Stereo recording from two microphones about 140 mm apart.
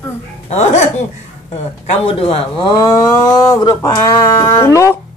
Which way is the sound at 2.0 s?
45° left (ahead or behind).